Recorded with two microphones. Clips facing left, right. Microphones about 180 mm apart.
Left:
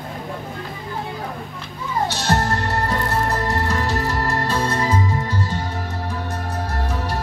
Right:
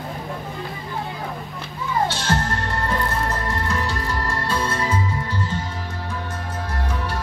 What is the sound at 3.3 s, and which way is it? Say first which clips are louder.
Music: left 3 dB; 35° left (ahead or behind).